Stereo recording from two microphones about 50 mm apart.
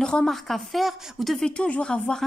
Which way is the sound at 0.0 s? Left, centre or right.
Centre.